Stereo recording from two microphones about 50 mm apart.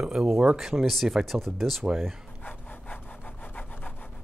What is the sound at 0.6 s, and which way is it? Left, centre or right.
Speech, centre.